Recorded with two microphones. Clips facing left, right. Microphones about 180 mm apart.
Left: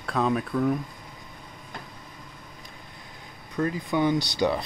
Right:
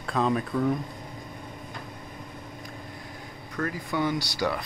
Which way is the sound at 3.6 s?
20° left (ahead or behind).